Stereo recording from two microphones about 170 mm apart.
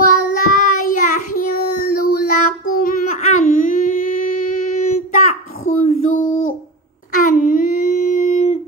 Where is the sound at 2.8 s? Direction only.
50° left (ahead or behind).